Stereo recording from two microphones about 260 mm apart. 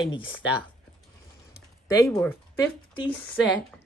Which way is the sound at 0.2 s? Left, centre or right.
Left.